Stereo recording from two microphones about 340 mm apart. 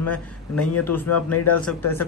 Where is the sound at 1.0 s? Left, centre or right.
Left.